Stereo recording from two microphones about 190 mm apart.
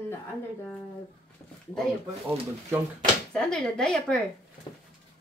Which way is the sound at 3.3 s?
5° left (ahead or behind).